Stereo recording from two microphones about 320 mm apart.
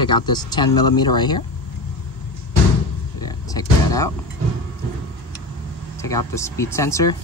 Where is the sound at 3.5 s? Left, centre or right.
Centre.